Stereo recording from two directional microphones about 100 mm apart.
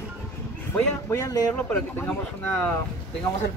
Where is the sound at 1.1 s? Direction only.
35° left (ahead or behind).